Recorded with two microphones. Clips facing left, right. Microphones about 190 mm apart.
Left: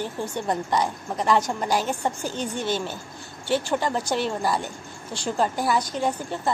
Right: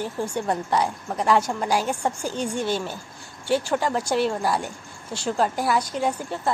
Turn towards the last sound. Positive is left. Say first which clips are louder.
# right 1 dB
turn(degrees=-5)  # may be behind; listen again after turning